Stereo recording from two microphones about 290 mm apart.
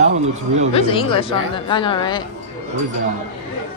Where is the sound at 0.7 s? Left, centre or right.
Centre.